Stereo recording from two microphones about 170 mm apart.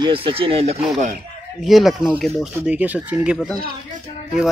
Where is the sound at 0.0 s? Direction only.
30° right (ahead or behind).